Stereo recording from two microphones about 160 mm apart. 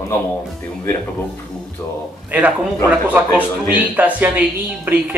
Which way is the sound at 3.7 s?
10° right (ahead or behind).